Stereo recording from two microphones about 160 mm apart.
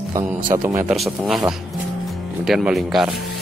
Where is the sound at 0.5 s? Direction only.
15° right (ahead or behind).